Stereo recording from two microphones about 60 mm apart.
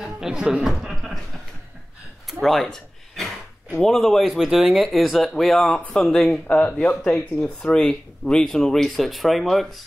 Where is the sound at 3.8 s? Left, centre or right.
Centre.